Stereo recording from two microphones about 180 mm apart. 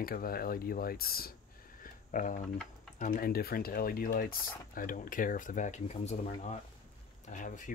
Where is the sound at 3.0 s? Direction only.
50° left (ahead or behind).